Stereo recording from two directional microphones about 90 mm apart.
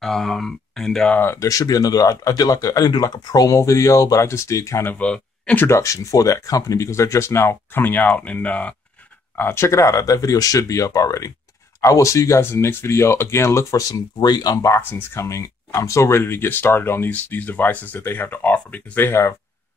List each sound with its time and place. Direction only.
0.0 s speech: 5° left (ahead or behind)
1.1 s speech: 25° left (ahead or behind)
1.5 s speech: 40° left (ahead or behind)
4.9 s speech: 15° left (ahead or behind)
5.6 s speech: 30° left (ahead or behind); by 8.7 s 15° left (ahead or behind)
9.4 s speech: 30° left (ahead or behind); by 14.7 s 45° left (ahead or behind)
14.7 s speech: 20° left (ahead or behind)
15.2 s speech: 35° left (ahead or behind)